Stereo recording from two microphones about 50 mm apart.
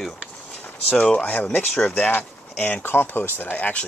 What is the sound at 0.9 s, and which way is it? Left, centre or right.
Speech, centre.